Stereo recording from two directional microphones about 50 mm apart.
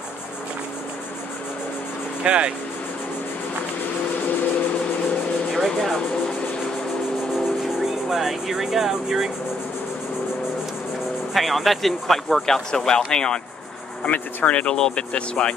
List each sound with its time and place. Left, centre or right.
2.2 s speech: centre
5.5 s a sound: centre
7.3 s speech: centre
11.3 s speech: centre
14.0 s speech: left